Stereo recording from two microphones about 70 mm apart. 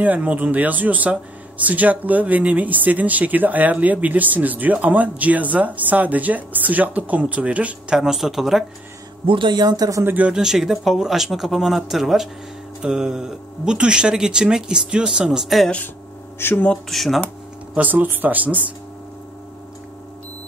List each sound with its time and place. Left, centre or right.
0.0 s speech: right
8.0 s speech: centre
9.5 s speech: right
10.0 s speech: right
10.3 s speech: centre
16.3 s speech: left
16.9 s speech: centre
17.7 s speech: right